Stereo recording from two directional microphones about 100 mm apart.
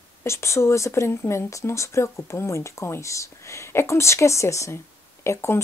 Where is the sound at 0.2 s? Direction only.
30° left (ahead or behind).